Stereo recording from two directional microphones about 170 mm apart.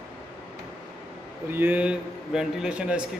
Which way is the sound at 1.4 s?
10° right (ahead or behind).